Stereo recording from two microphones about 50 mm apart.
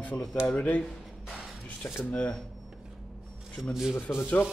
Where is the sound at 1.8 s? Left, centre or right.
Left.